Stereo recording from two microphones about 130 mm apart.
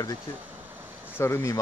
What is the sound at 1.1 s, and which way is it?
Speech, 20° left (ahead or behind).